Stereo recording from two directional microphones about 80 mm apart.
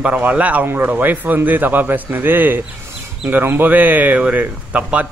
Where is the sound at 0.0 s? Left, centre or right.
Centre.